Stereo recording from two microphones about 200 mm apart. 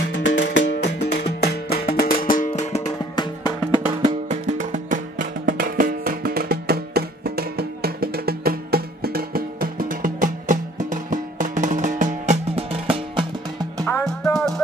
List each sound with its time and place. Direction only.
0.1 s music: 65° left (ahead or behind); by 2.9 s 35° left (ahead or behind)
3.2 s music: 20° left (ahead or behind)
4.3 s music: 35° right (ahead or behind)
5.2 s music: 65° right (ahead or behind)
5.6 s music: 45° right (ahead or behind); by 13.2 s 30° right (ahead or behind)
13.8 s music: 15° left (ahead or behind)